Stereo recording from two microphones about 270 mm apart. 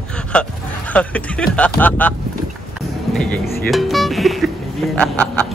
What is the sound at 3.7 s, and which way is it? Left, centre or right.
Speech, centre.